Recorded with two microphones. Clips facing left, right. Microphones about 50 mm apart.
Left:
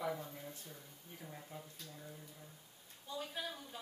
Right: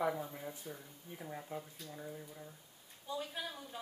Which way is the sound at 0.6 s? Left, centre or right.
Centre.